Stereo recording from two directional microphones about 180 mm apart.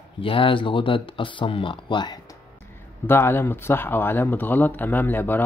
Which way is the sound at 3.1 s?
15° left (ahead or behind).